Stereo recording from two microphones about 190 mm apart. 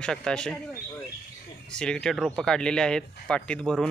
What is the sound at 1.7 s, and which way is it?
Speech, 5° left (ahead or behind).